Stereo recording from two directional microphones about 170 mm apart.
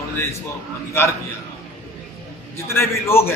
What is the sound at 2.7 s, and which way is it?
Speech, 15° left (ahead or behind).